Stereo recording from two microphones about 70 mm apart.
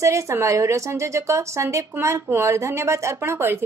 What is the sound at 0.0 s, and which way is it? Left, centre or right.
Speech, right.